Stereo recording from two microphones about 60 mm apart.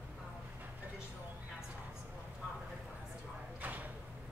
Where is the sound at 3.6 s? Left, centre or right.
Right.